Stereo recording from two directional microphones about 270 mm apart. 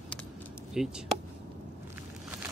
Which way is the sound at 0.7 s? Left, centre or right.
Centre.